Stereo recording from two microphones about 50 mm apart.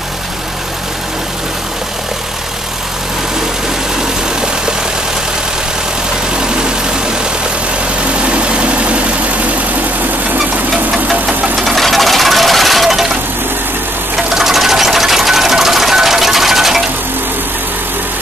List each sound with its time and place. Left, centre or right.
6.4 s vehicle: centre
8.2 s vehicle: right
11.5 s jackhammer: centre
14.1 s sewing machine: centre